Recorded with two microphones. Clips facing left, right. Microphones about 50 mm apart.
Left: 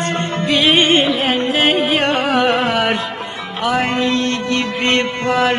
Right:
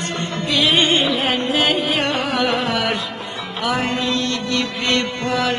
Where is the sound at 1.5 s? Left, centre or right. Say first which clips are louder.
Left 4 dB; left.